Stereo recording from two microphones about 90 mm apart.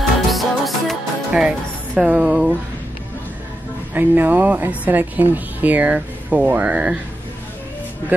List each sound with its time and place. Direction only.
0.3 s music: centre (ahead or behind)
2.0 s speech: 15° right (ahead or behind)
3.9 s speech: 20° right (ahead or behind)